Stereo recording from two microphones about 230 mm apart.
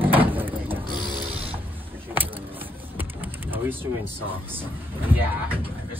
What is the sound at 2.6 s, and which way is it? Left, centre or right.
Vehicle, centre.